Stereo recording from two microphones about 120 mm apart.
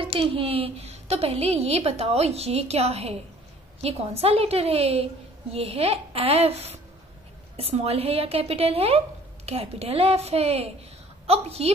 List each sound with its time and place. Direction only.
0.0 s a woman's voice: 45° right (ahead or behind)